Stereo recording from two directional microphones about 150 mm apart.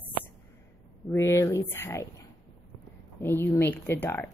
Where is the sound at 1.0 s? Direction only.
20° left (ahead or behind).